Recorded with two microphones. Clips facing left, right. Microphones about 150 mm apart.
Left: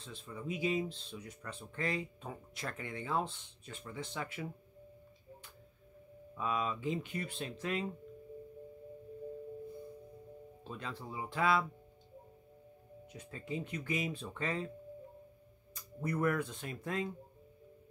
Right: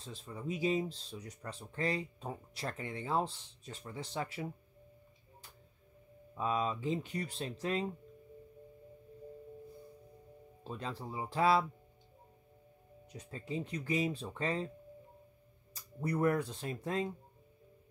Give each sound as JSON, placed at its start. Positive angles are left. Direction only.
{"t": 0.0, "sound": "speech", "side_deg": -35}
{"t": 6.3, "sound": "speech", "side_deg": -30}
{"t": 10.6, "sound": "speech", "side_deg": -35}
{"t": 13.1, "sound": "speech", "side_deg": -35}
{"t": 15.7, "sound": "speech", "side_deg": -35}